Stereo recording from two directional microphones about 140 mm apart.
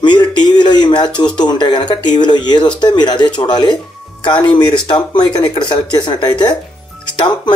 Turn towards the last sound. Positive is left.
turn(degrees=35)  # may be behind; listen again after turning